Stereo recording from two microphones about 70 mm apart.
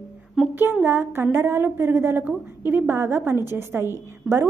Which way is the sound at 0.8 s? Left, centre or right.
Right.